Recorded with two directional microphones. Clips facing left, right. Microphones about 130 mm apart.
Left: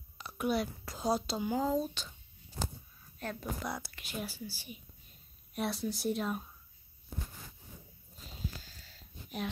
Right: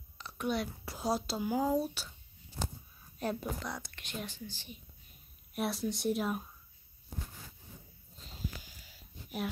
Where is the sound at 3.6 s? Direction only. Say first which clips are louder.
Left 2 dB; 10° left (ahead or behind).